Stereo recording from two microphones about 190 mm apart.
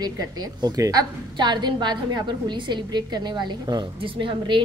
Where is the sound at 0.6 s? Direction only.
20° right (ahead or behind).